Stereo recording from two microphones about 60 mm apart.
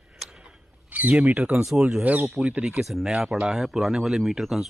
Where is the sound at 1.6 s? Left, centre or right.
Centre.